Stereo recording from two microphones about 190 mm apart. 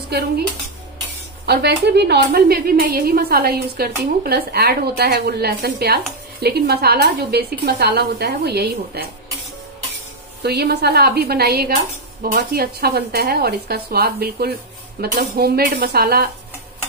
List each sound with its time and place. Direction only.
0.1 s a woman's voice: 60° right (ahead or behind)
1.4 s a woman's voice: 60° right (ahead or behind)
10.4 s a woman's voice: 60° right (ahead or behind)